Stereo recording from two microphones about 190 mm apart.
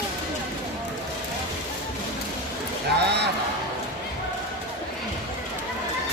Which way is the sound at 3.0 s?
60° right (ahead or behind).